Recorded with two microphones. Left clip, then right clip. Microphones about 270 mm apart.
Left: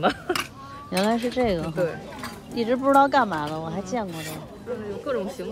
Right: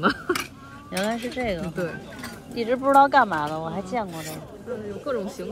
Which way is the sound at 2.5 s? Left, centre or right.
Centre.